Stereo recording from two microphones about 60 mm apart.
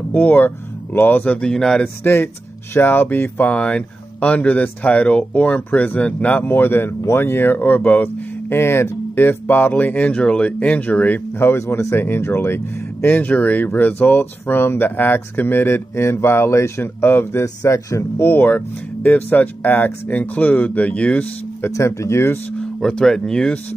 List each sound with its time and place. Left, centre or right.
0.1 s speech: left
1.2 s speech: centre
2.0 s speech: left
3.5 s speech: centre
11.3 s speech: left
21.7 s speech: left
22.6 s speech: centre